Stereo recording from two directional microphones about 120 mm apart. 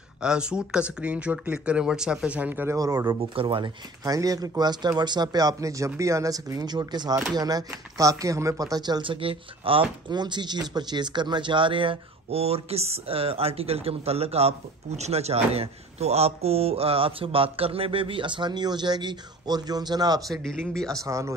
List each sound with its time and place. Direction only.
0.2 s speech: 5° right (ahead or behind)
2.8 s speech: 30° right (ahead or behind)
3.1 s speech: 45° right (ahead or behind)
4.0 s speech: 30° right (ahead or behind)
20.2 s speech: 5° left (ahead or behind)
21.0 s speech: 25° right (ahead or behind)